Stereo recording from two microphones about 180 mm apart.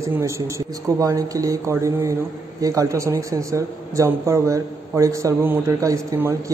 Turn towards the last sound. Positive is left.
turn(degrees=-15)  # may be behind; listen again after turning